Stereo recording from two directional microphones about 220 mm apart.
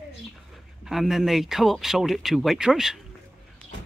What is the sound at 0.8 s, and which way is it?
Speech, centre (ahead or behind).